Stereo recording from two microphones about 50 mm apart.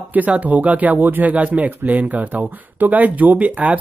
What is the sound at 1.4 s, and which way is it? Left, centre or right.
Speech, right.